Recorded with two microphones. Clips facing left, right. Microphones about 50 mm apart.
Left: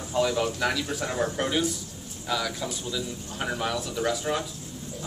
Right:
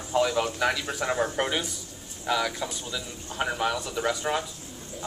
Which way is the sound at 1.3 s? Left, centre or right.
Centre.